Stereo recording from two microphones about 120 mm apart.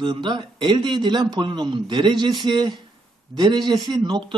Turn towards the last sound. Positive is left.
turn(degrees=-40)  # may be behind; listen again after turning